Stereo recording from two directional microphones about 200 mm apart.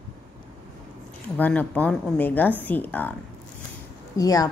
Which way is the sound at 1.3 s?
10° left (ahead or behind).